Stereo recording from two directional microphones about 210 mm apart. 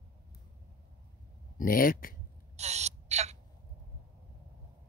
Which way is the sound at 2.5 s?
30° right (ahead or behind).